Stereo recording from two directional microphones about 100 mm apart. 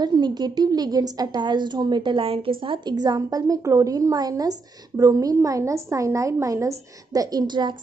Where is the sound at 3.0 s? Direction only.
40° right (ahead or behind).